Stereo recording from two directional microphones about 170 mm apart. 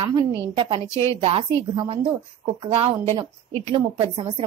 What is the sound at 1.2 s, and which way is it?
A woman's voice, 35° right (ahead or behind).